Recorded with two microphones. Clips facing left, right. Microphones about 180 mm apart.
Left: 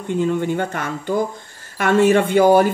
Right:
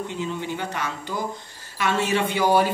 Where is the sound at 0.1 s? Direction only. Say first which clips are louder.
Left 9 dB; 55° left (ahead or behind).